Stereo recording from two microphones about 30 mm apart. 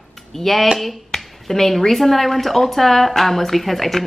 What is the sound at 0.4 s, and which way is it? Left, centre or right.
Speech, centre.